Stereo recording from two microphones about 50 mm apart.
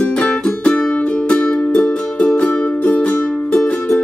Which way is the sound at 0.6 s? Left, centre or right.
Left.